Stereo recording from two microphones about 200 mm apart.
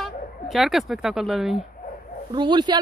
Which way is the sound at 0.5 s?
Centre (ahead or behind).